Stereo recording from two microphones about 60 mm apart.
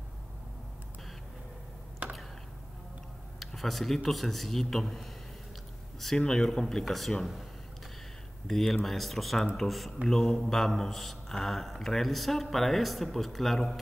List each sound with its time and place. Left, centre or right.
2.0 s a sound: right
3.3 s speech: centre
8.5 s speech: centre